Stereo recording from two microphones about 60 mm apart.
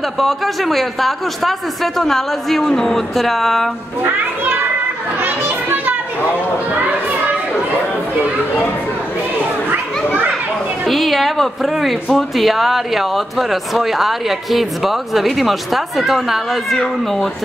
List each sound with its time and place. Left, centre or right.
0.2 s speech: centre
5.2 s children playing: right
6.7 s a child's voice: right
10.9 s speech: centre